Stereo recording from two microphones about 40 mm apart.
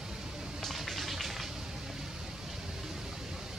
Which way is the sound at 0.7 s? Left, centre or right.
Centre.